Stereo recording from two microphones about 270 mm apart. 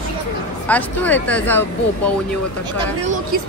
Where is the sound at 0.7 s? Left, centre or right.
Centre.